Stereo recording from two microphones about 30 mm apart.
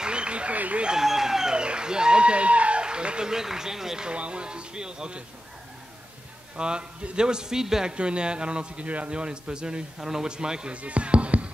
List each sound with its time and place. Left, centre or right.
0.0 s a sound: right
1.0 s speech: centre
1.5 s speech: right
2.8 s a sound: right
3.3 s speech: centre
4.1 s speech: right
6.5 s a man's voice: right
7.9 s speech: right
8.8 s a man's voice: right
9.1 s speech: right
9.9 s speech: centre
10.2 s a man's voice: right
10.7 s basketball bounce: right